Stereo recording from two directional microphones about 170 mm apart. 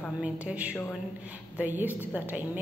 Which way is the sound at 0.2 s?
5° right (ahead or behind).